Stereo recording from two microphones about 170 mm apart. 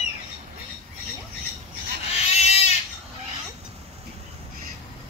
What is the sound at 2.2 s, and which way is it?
Goat, 40° left (ahead or behind).